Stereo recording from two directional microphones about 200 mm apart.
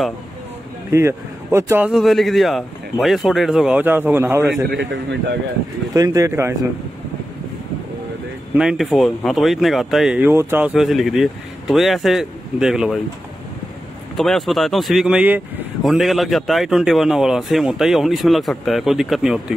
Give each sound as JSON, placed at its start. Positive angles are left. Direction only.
{"t": 0.9, "sound": "speech", "side_deg": -15}
{"t": 4.6, "sound": "a man's voice", "side_deg": -60}
{"t": 5.9, "sound": "speech", "side_deg": -15}
{"t": 8.5, "sound": "speech", "side_deg": 0}
{"t": 14.1, "sound": "speech", "side_deg": 0}